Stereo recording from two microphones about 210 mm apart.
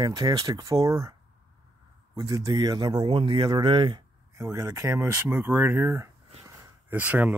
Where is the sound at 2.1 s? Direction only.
15° right (ahead or behind).